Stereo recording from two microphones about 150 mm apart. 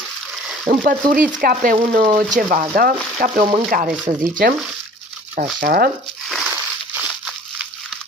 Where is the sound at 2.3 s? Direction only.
60° right (ahead or behind).